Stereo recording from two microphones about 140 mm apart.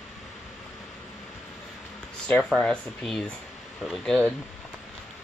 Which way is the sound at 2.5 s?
5° left (ahead or behind).